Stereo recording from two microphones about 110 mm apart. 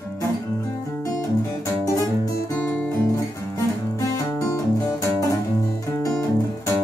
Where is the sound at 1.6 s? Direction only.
30° left (ahead or behind).